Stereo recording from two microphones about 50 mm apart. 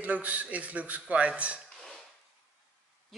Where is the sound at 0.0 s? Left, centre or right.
Right.